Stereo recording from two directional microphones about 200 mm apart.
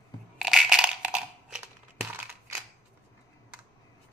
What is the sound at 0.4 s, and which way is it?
Crushing, centre (ahead or behind).